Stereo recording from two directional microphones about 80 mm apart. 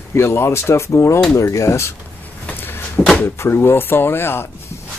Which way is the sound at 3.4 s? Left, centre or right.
Left.